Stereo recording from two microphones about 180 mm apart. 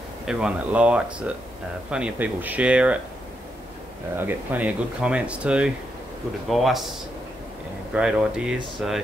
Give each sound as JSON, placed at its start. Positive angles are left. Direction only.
{"t": 0.2, "sound": "speech", "side_deg": -5}
{"t": 4.2, "sound": "speech", "side_deg": -10}
{"t": 7.9, "sound": "speech", "side_deg": -5}